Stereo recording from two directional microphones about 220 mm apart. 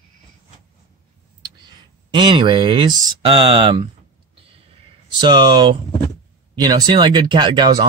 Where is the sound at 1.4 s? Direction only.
20° right (ahead or behind).